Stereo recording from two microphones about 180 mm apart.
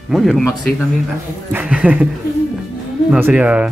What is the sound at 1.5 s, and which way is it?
Speech, 10° right (ahead or behind).